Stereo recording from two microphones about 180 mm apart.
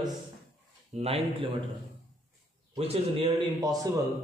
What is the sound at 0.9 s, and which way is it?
Speech, 35° right (ahead or behind).